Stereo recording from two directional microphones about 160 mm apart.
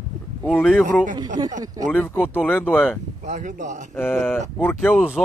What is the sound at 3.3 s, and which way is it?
Speech, 50° right (ahead or behind).